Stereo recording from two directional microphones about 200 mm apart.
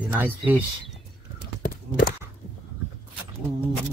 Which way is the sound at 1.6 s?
45° left (ahead or behind).